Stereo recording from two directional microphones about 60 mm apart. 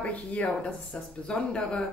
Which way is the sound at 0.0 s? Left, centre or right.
Left.